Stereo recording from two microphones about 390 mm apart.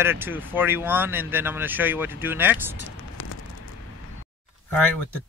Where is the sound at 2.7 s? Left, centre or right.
Left.